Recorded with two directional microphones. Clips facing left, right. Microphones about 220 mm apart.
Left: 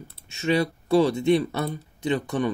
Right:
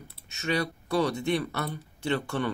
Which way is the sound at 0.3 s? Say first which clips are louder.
Left 6 dB; 25° left (ahead or behind).